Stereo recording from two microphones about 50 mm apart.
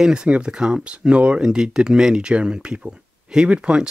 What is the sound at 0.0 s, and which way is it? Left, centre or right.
Speech, centre.